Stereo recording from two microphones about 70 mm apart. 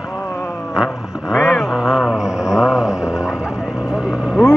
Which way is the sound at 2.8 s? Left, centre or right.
Left.